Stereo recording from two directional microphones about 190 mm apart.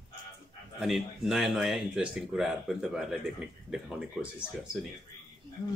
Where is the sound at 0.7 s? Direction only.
Centre (ahead or behind).